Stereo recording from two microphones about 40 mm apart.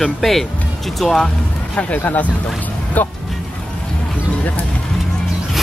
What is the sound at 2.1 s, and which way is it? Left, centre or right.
Speech, left.